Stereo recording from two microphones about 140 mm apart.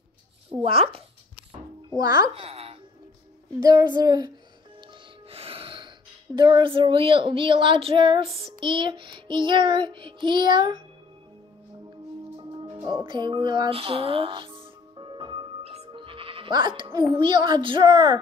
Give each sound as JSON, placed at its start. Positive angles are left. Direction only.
{"t": 0.6, "sound": "child singing", "side_deg": -40}
{"t": 2.0, "sound": "speech", "side_deg": -30}
{"t": 3.6, "sound": "child singing", "side_deg": -30}
{"t": 5.3, "sound": "music", "side_deg": -40}
{"t": 6.3, "sound": "child singing", "side_deg": -30}
{"t": 12.4, "sound": "music", "side_deg": -35}
{"t": 17.1, "sound": "child singing", "side_deg": -35}
{"t": 17.9, "sound": "child singing", "side_deg": -25}